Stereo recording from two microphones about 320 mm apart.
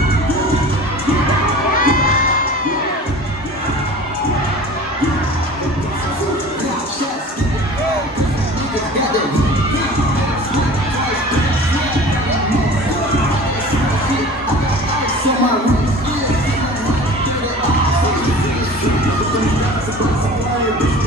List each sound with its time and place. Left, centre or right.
1.8 s children shouting: left